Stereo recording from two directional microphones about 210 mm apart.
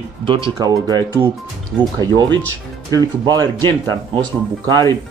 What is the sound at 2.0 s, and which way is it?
Speech, 20° right (ahead or behind).